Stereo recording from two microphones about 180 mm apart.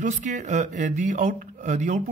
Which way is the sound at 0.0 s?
45° right (ahead or behind).